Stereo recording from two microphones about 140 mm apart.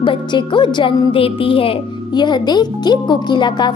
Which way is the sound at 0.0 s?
35° left (ahead or behind).